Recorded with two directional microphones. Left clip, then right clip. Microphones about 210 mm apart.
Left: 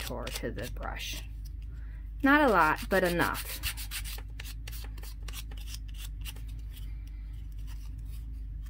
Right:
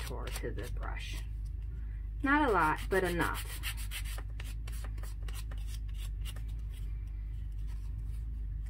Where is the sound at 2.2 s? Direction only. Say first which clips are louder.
Left 5 dB; 60° left (ahead or behind).